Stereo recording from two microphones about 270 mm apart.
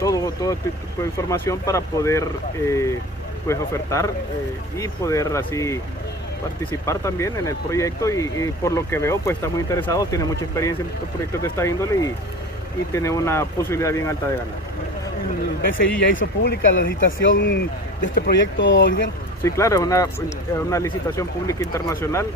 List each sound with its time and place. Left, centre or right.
0.0 s speech: centre
6.9 s speech: centre
15.8 s speech: left
19.4 s speech: centre